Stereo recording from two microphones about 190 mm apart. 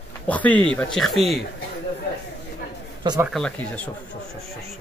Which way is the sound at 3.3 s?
5° left (ahead or behind).